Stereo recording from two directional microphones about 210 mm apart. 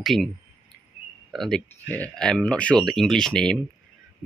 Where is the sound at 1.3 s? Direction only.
5° left (ahead or behind).